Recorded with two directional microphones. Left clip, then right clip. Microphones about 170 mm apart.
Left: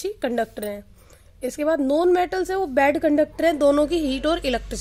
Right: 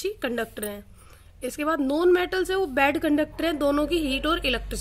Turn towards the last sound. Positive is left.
turn(degrees=35)  # may be behind; listen again after turning